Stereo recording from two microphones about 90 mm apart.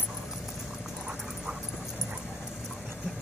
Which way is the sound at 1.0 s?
10° right (ahead or behind).